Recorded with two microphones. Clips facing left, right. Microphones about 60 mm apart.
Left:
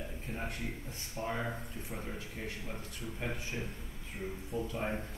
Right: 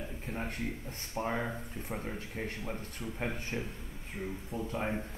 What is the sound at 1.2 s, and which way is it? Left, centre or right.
Speech, right.